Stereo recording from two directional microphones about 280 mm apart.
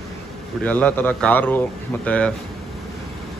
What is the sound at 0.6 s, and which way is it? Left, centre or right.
A man's voice, centre.